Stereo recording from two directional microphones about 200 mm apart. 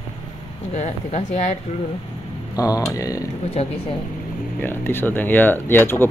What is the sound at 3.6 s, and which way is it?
Speech, 30° left (ahead or behind).